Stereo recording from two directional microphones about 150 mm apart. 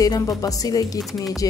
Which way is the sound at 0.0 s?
25° left (ahead or behind).